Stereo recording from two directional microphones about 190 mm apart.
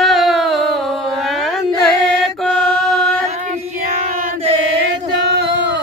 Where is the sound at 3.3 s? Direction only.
40° right (ahead or behind).